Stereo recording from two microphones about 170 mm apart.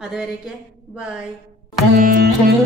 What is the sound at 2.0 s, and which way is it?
Music, 55° right (ahead or behind).